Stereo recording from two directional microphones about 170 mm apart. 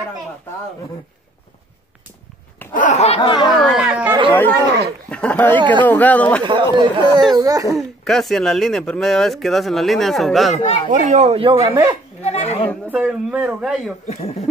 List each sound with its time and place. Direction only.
2.7 s a sound: 45° left (ahead or behind)
3.2 s speech: 25° left (ahead or behind)
3.5 s chatter: centre (ahead or behind)
4.3 s speech: 10° left (ahead or behind)
6.4 s speech: 30° right (ahead or behind)
7.7 s speech: centre (ahead or behind)
10.9 s speech: 45° right (ahead or behind)
11.7 s speech: 20° right (ahead or behind)
12.2 s speech: 40° left (ahead or behind)
12.9 s speech: 10° right (ahead or behind)
14.0 s speech: 40° left (ahead or behind)